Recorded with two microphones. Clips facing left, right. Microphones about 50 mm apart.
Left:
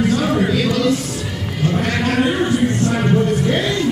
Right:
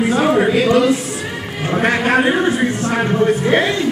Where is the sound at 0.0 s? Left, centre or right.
Right.